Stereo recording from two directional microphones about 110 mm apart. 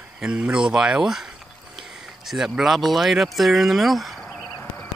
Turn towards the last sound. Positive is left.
turn(degrees=20)  # may be behind; listen again after turning